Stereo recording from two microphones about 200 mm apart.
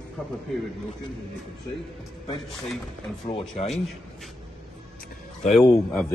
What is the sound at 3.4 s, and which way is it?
Speech, centre (ahead or behind).